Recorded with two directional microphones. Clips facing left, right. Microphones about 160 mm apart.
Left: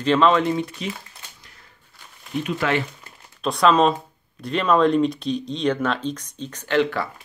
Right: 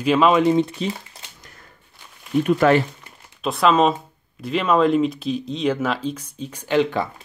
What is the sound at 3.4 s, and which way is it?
Speech, centre (ahead or behind).